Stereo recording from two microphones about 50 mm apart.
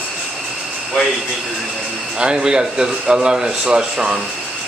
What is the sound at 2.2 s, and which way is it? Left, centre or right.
A man's voice, centre.